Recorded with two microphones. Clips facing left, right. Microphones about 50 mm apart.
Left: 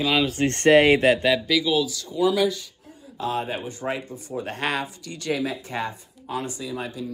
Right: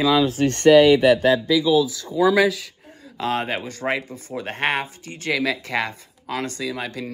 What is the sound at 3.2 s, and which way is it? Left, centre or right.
Speech, right.